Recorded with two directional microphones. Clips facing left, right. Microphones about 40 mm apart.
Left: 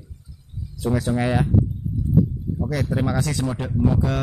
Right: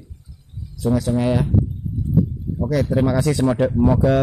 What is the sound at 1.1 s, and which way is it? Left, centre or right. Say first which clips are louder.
Speech: right 2 dB; centre.